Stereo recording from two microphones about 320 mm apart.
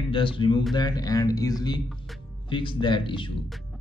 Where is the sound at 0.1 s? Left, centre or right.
Centre.